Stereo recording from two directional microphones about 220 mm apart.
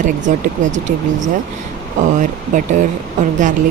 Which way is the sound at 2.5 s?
35° right (ahead or behind).